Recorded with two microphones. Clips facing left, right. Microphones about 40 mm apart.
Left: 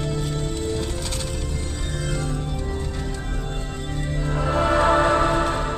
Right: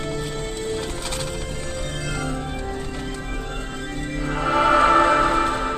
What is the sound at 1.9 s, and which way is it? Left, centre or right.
Music, right.